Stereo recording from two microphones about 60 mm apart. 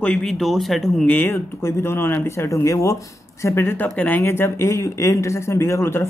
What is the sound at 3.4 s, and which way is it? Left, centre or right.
Speech, left.